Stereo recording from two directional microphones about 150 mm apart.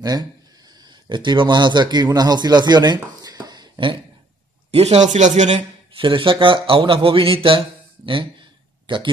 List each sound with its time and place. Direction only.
0.0 s a man's voice: 25° right (ahead or behind)
4.6 s speech: 45° right (ahead or behind)
5.9 s speech: 35° right (ahead or behind)